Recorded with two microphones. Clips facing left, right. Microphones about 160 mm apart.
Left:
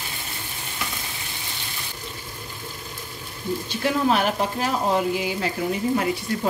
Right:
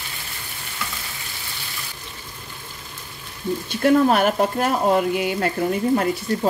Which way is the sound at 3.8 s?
50° right (ahead or behind).